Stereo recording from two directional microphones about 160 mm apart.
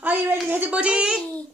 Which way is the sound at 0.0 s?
10° right (ahead or behind).